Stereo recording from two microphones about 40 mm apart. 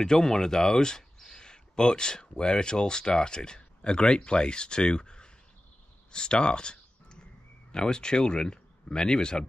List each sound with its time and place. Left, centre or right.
0.0 s speech: centre